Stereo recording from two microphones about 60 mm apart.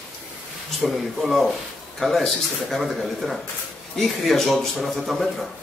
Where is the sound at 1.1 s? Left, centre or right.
Centre.